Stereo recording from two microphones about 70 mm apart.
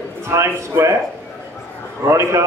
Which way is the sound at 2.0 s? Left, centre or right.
Right.